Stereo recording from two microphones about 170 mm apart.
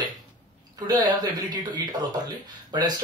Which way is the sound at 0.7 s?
25° right (ahead or behind).